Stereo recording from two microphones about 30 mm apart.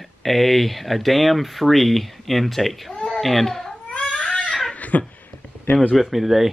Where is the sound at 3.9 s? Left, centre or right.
Left.